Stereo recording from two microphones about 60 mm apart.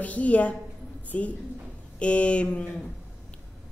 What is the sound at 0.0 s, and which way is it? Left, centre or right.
Speech, left.